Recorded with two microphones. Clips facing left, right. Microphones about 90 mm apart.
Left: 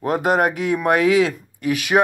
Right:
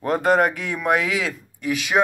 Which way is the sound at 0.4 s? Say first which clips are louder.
Left 2 dB; 50° left (ahead or behind).